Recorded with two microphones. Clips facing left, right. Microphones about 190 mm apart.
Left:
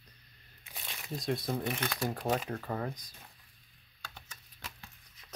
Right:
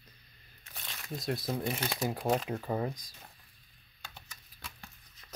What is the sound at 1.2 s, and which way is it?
Speech, centre (ahead or behind).